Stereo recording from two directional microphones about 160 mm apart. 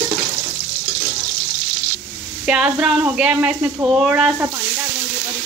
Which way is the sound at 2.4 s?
5° right (ahead or behind).